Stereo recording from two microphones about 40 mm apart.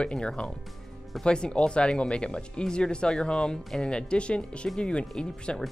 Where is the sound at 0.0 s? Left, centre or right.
Left.